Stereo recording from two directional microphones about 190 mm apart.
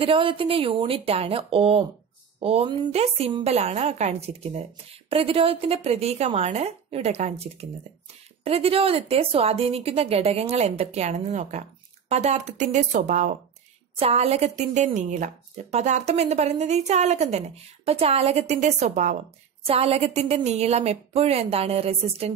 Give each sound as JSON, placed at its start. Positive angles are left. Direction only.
{"t": 0.0, "sound": "speech", "side_deg": -25}